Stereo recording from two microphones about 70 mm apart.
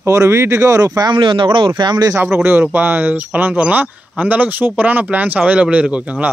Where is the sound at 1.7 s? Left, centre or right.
Right.